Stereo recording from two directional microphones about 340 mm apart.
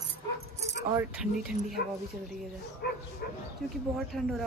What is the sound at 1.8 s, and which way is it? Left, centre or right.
Speech, left.